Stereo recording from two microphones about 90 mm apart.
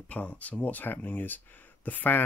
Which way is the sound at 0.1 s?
15° left (ahead or behind).